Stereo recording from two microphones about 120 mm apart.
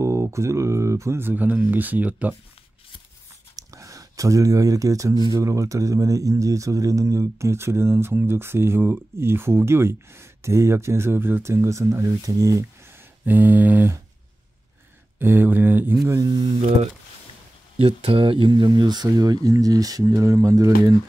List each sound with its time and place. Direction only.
0.0 s speech: 25° right (ahead or behind)
3.5 s speech: 25° right (ahead or behind)
13.2 s speech: 15° right (ahead or behind)
15.1 s speech: 15° right (ahead or behind)
16.2 s speech: 35° right (ahead or behind)
17.7 s speech: 50° right (ahead or behind); by 20.9 s 30° right (ahead or behind)